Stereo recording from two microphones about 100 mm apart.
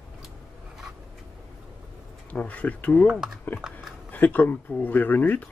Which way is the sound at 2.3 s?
15° left (ahead or behind).